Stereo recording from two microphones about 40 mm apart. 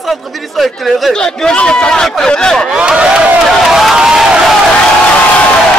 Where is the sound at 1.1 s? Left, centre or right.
Centre.